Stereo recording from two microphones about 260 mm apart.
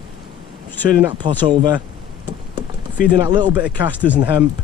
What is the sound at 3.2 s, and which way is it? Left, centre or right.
Speech, centre.